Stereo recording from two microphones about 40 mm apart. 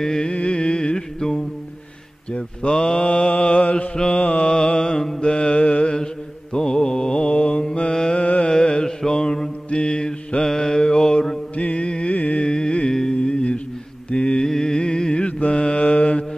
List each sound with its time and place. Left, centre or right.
0.0 s mantra: centre
0.3 s music: left
2.7 s mantra: centre
3.0 s mantra: left; by 5.3 s centre
5.3 s mantra: left
7.9 s music: centre
8.2 s carnatic music: left
8.5 s mantra: centre
11.5 s carnatic music: left
12.4 s music: centre
13.1 s mantra: left
15.2 s mantra: left